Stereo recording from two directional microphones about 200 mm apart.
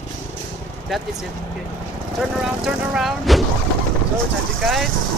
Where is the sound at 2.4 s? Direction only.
Centre (ahead or behind).